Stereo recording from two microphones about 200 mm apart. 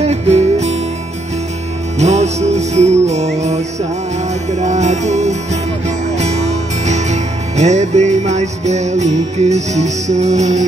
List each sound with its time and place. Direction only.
0.0 s music: 30° right (ahead or behind)
2.0 s music: 35° right (ahead or behind)